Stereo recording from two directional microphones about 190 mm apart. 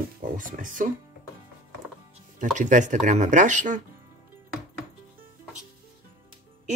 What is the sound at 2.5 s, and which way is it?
Speech, 40° right (ahead or behind).